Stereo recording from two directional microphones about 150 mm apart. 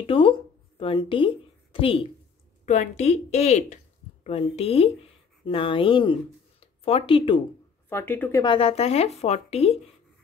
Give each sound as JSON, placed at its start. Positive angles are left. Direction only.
{"t": 0.0, "sound": "speech", "side_deg": 35}
{"t": 2.6, "sound": "speech", "side_deg": 50}
{"t": 7.9, "sound": "speech", "side_deg": 15}
{"t": 8.4, "sound": "speech", "side_deg": 35}